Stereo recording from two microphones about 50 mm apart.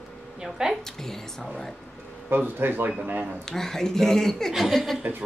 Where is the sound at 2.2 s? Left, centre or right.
Right.